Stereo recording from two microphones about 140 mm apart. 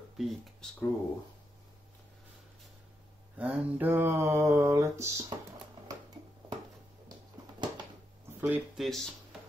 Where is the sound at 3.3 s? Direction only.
10° right (ahead or behind).